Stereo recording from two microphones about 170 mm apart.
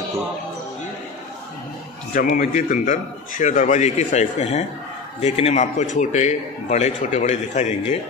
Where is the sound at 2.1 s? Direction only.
55° left (ahead or behind).